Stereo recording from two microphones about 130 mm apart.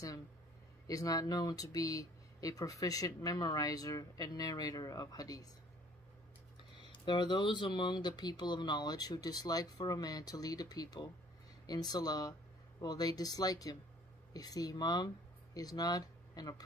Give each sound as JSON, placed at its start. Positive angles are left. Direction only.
{"t": 0.8, "sound": "speech", "side_deg": 30}
{"t": 6.9, "sound": "speech", "side_deg": 35}